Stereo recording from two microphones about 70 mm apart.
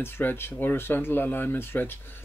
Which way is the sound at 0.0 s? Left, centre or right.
Left.